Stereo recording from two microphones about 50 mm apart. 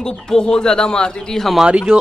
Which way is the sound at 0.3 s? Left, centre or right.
Centre.